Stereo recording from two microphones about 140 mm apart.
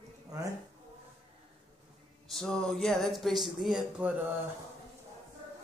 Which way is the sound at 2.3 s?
5° left (ahead or behind).